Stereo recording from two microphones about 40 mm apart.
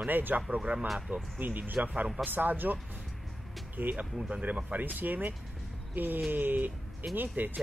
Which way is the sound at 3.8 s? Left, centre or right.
Right.